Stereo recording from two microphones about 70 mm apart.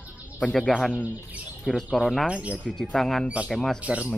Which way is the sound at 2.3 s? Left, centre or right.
Centre.